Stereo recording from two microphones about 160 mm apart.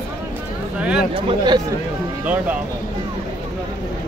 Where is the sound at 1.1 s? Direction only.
30° right (ahead or behind).